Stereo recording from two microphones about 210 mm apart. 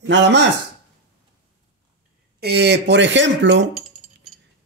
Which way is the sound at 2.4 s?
55° right (ahead or behind).